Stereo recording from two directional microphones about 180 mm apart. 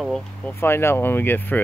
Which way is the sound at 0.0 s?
Centre (ahead or behind).